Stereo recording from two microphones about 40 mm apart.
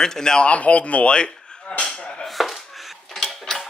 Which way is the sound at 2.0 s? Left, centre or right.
Left.